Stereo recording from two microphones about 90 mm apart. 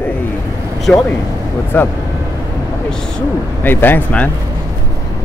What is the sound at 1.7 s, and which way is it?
Speech, 20° left (ahead or behind).